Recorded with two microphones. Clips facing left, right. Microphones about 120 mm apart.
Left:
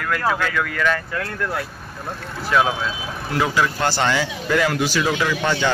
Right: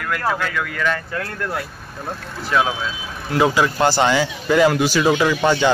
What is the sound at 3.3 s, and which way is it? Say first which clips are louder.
Speech: right 4 dB; 20° right (ahead or behind).